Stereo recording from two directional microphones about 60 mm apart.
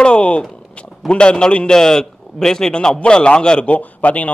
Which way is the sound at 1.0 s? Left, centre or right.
Centre.